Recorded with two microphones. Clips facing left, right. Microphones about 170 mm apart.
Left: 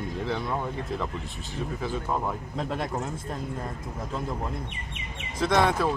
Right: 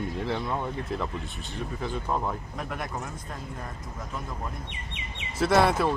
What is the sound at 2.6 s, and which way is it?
Speech, 25° left (ahead or behind).